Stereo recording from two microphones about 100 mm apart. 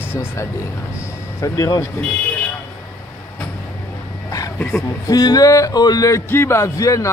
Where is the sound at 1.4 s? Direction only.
35° left (ahead or behind).